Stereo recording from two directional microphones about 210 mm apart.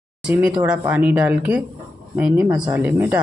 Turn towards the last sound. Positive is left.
turn(degrees=-10)  # may be behind; listen again after turning